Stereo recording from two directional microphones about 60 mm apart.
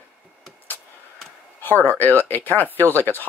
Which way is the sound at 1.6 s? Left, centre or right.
Left.